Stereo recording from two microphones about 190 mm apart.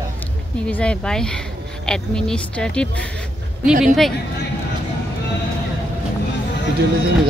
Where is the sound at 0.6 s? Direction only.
5° left (ahead or behind).